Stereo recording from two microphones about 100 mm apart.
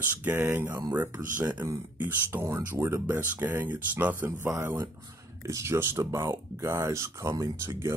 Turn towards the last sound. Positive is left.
turn(degrees=-25)  # may be behind; listen again after turning